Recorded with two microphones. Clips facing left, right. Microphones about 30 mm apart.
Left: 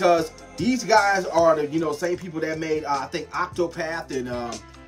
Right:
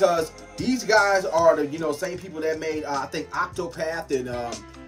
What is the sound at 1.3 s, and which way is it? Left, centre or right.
Speech, left.